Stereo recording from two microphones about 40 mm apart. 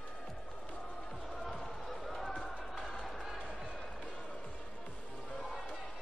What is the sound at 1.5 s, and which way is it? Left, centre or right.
Run, centre.